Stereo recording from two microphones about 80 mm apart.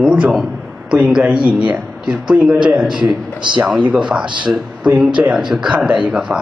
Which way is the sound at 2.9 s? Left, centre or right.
Right.